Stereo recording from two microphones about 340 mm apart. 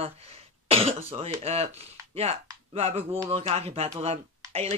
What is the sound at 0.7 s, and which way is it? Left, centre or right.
Speech, centre.